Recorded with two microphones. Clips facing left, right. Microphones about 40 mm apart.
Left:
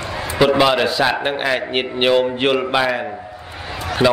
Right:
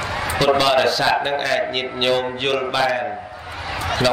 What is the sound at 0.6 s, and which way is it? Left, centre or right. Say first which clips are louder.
A man's voice: left 1 dB; centre.